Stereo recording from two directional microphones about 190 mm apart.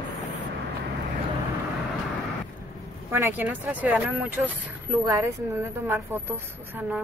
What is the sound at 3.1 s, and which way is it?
Speech, 10° right (ahead or behind).